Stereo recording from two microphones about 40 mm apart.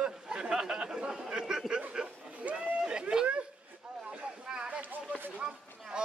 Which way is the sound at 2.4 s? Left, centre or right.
Right.